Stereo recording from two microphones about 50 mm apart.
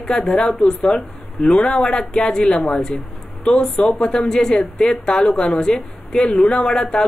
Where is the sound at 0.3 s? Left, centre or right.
Centre.